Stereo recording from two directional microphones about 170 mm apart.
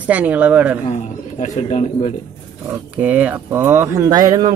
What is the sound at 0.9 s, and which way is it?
Speech, 45° left (ahead or behind).